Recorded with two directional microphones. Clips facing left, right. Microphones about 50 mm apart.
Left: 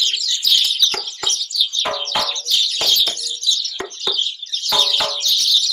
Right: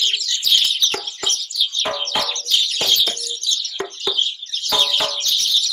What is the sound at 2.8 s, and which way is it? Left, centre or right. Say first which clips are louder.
Bird: even; right.